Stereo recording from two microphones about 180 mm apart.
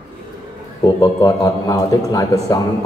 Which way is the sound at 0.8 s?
20° left (ahead or behind).